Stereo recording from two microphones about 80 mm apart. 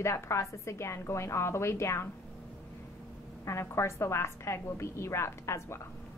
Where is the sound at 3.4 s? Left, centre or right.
Left.